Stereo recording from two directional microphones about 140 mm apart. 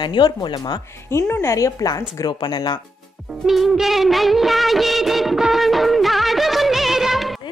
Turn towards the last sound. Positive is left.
turn(degrees=0)  # may be behind; listen again after turning